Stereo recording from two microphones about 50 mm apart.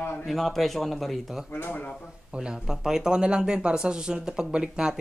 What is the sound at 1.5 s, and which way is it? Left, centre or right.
Speech, left.